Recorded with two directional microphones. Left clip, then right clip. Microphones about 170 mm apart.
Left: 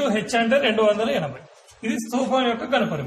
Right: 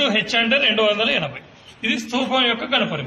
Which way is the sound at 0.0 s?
25° left (ahead or behind).